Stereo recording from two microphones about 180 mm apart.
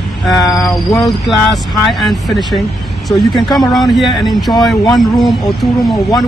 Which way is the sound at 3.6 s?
Centre (ahead or behind).